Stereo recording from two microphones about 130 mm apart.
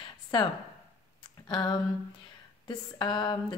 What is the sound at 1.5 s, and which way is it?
A woman's voice, 35° left (ahead or behind).